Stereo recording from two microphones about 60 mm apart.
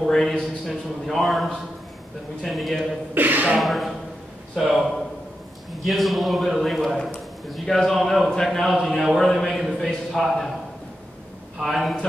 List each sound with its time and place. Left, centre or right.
0.0 s a man's voice: centre
3.2 s speech: right
3.5 s a man's voice: centre
11.6 s a man's voice: centre